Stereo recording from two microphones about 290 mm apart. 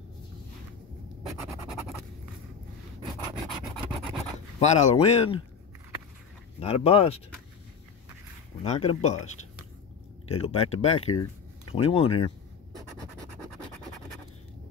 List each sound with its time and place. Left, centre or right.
1.2 s scratch: centre
4.2 s speech: left
6.6 s speech: left
8.6 s speech: left
10.2 s speech: centre